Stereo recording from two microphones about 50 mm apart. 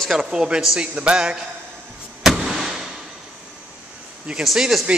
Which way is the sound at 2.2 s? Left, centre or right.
Centre.